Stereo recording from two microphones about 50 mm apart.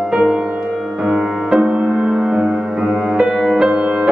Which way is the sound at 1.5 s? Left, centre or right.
Centre.